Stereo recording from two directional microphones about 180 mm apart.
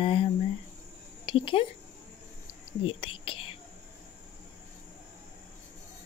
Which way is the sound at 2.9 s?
30° left (ahead or behind).